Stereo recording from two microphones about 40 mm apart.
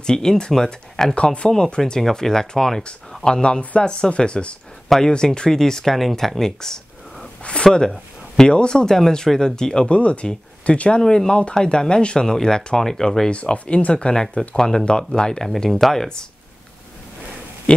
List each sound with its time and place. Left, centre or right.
0.0 s speech: centre
1.1 s speech: left
2.0 s speech: centre; by 4.6 s left
4.8 s speech: centre
5.1 s speech: left
7.4 s speech: left
9.8 s speech: left
11.0 s speech: centre
13.3 s speech: left
14.6 s speech: centre
17.7 s speech: left